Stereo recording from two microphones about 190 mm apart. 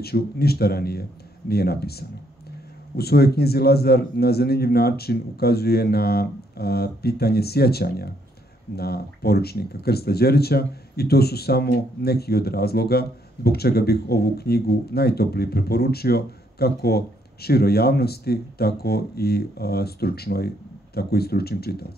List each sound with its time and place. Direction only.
0.0 s speech: 55° left (ahead or behind)